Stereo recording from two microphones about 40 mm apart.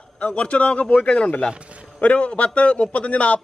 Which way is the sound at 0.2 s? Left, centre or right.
Left.